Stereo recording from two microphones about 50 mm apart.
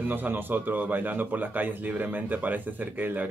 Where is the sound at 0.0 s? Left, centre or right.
Right.